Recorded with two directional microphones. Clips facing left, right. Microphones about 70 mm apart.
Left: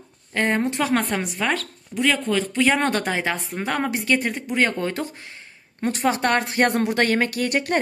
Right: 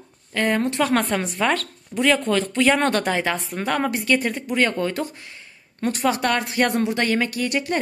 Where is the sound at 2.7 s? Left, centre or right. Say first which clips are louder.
Right 2 dB; left.